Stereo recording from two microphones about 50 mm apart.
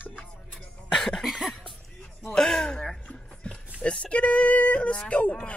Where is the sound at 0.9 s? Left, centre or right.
Centre.